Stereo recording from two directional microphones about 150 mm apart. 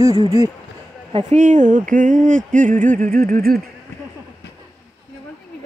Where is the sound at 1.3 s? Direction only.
55° right (ahead or behind); by 3.6 s 80° right.